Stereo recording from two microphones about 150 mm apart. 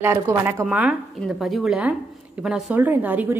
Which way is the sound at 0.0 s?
15° right (ahead or behind).